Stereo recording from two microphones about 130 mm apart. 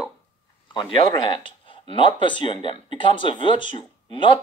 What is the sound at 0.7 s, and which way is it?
Speech, 35° left (ahead or behind).